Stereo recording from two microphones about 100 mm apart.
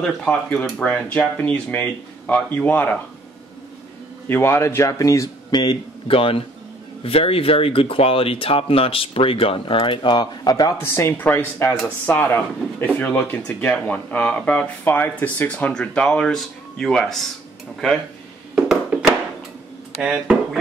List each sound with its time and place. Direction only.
0.2 s speech: 10° left (ahead or behind)
4.3 s a man's voice: 25° left (ahead or behind)
5.5 s speech: 50° left (ahead or behind)
10.8 s speech: 25° left (ahead or behind); by 17.3 s 5° left (ahead or behind)
18.5 s a sound: 10° right (ahead or behind)
20.0 s speech: 10° right (ahead or behind)